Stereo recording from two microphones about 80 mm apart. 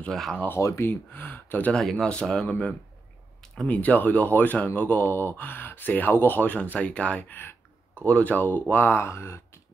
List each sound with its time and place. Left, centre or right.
0.1 s speech: centre
0.6 s speech: left
1.7 s speech: centre
3.6 s speech: centre